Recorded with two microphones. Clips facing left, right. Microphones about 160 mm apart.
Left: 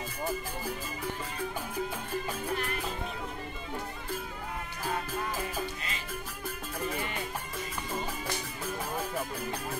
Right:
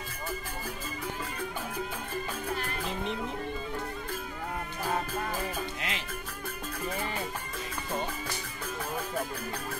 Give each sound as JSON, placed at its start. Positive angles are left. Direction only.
{"t": 5.8, "sound": "music", "side_deg": -75}